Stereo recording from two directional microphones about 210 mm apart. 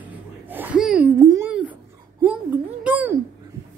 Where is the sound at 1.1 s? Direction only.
15° right (ahead or behind).